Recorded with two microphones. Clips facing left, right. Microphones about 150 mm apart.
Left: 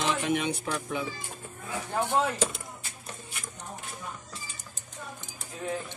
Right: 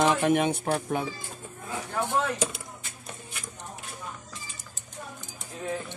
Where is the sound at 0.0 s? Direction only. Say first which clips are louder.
Right 5 dB; 50° right (ahead or behind).